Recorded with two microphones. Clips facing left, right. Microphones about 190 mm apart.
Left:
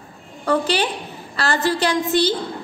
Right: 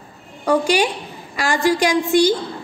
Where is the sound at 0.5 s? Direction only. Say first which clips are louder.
Right 3 dB; 10° right (ahead or behind).